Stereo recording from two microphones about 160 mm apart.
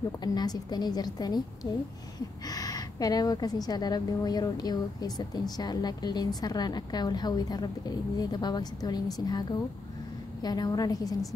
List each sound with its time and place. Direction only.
0.2 s a woman's voice: 25° left (ahead or behind)